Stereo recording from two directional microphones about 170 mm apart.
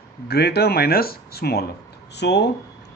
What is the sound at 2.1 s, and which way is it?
Speech, 85° left.